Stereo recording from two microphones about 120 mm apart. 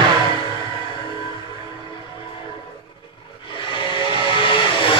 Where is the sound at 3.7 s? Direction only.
45° left (ahead or behind).